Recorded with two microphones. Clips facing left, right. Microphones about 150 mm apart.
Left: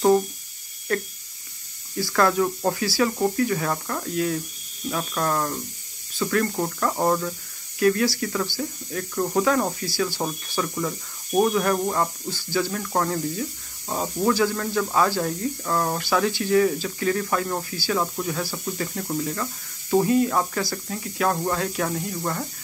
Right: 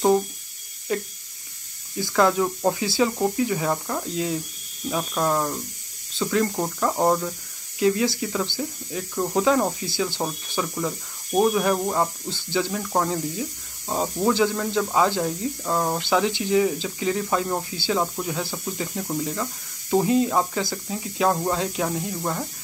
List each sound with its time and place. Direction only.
0.9 s speech: 15° right (ahead or behind)